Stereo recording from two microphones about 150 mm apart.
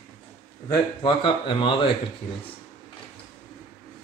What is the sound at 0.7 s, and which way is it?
Speech, 30° left (ahead or behind).